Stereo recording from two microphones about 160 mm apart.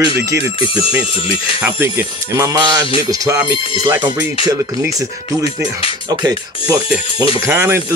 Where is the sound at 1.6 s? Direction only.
15° right (ahead or behind).